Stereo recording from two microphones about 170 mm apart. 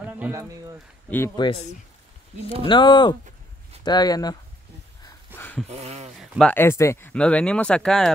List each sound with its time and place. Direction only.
0.0 s a sound: 10° right (ahead or behind)
1.3 s speech: 25° left (ahead or behind)
2.6 s speech: 30° left (ahead or behind)
5.3 s a sound: 10° left (ahead or behind)
5.7 s speech: 40° right (ahead or behind)
6.1 s speech: centre (ahead or behind)
6.5 s speech: 15° left (ahead or behind)